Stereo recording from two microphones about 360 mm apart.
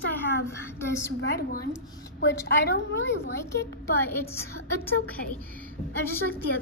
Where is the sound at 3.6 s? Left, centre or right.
Centre.